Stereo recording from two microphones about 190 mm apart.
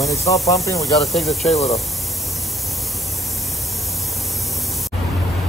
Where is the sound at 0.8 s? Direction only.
Centre (ahead or behind).